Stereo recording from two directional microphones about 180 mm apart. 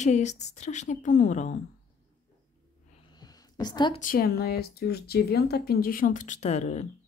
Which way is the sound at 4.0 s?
50° left (ahead or behind).